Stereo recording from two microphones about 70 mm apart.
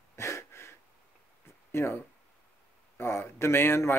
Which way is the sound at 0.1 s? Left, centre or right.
Left.